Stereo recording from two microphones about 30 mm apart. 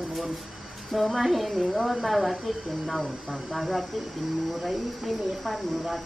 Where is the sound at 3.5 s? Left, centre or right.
Centre.